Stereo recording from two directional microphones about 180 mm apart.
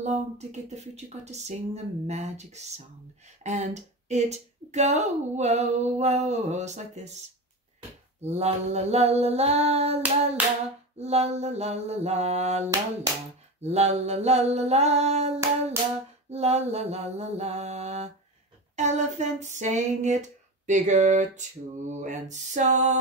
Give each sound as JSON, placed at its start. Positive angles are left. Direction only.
{"t": 0.0, "sound": "speech", "side_deg": -40}
{"t": 8.2, "sound": "speech", "side_deg": -35}
{"t": 10.4, "sound": "hands", "side_deg": -10}
{"t": 11.0, "sound": "speech", "side_deg": -35}